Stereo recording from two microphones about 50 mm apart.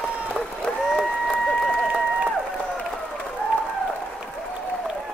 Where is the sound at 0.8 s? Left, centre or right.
Centre.